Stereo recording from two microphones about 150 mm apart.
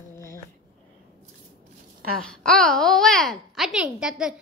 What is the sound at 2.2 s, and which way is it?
Speech, 5° left (ahead or behind).